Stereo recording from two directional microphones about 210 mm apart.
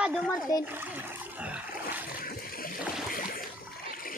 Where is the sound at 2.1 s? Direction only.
45° left (ahead or behind).